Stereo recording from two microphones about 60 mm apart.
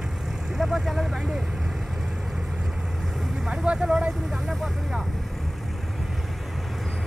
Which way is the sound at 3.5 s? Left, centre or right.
Centre.